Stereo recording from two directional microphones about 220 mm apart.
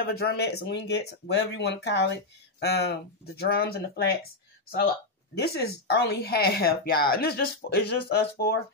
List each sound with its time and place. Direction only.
0.1 s speech: 45° left (ahead or behind)
5.4 s speech: 45° left (ahead or behind)